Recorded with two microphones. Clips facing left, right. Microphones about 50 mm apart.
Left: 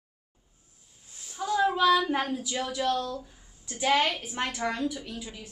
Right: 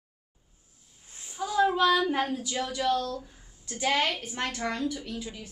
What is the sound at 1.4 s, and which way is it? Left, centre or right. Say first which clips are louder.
A woman's voice: even; centre.